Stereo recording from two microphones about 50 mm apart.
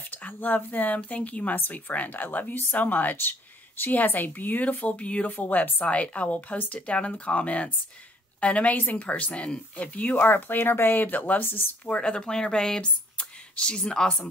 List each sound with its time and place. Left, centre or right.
0.1 s a woman's voice: left
11.4 s speech: left
11.8 s speech: left